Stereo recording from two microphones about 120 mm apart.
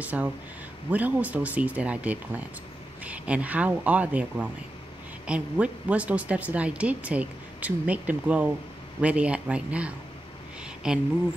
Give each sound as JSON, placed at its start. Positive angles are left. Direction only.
{"t": 0.0, "sound": "a woman's voice", "side_deg": -10}